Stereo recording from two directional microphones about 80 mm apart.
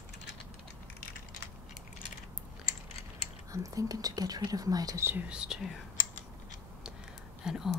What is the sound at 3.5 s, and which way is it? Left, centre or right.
Speech, right.